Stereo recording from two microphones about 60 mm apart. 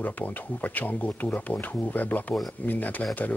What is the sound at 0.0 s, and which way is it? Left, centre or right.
Speech, left.